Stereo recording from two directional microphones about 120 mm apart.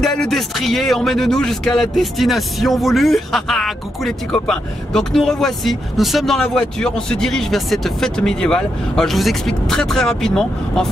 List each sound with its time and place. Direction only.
0.0 s speech: centre (ahead or behind)